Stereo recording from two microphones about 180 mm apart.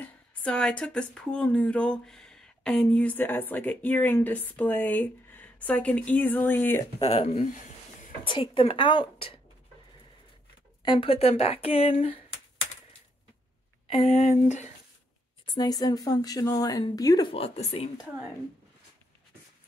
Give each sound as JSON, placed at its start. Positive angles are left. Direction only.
{"t": 0.0, "sound": "speech", "side_deg": 5}
{"t": 7.0, "sound": "speech", "side_deg": 35}
{"t": 8.3, "sound": "speech", "side_deg": 30}
{"t": 10.8, "sound": "speech", "side_deg": 25}
{"t": 13.8, "sound": "speech", "side_deg": 35}
{"t": 15.4, "sound": "speech", "side_deg": 25}